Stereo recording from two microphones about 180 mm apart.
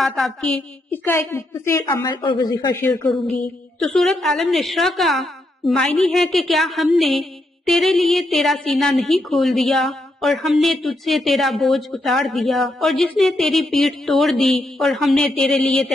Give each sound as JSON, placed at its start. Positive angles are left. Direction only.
{"t": 0.0, "sound": "a woman's voice", "side_deg": 0}
{"t": 2.8, "sound": "a woman's voice", "side_deg": 5}